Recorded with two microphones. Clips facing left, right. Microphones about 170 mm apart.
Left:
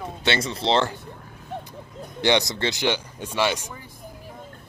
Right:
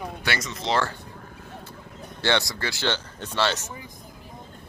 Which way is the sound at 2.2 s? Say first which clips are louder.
Left 4 dB; 20° left (ahead or behind).